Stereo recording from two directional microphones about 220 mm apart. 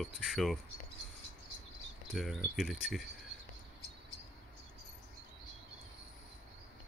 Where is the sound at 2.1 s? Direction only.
Centre (ahead or behind).